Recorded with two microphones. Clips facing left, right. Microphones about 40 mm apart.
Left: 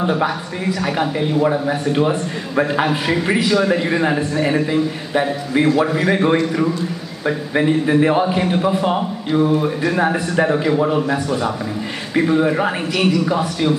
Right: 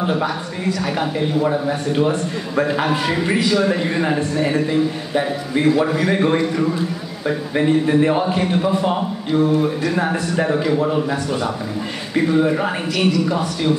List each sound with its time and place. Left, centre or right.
0.7 s a man's voice: centre
11.2 s a man's voice: centre
12.1 s a man's voice: centre